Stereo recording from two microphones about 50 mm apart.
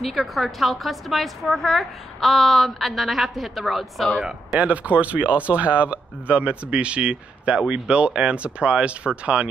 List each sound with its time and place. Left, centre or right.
0.0 s a woman's voice: centre
4.2 s speech: centre
4.6 s speech: right